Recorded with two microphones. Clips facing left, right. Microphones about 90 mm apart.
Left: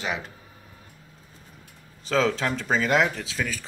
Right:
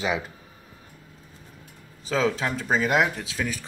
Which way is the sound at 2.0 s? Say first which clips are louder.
Left 1 dB; 10° right (ahead or behind).